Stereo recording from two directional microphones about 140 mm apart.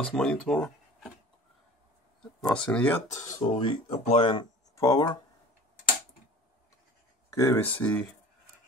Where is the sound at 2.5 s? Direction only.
10° left (ahead or behind).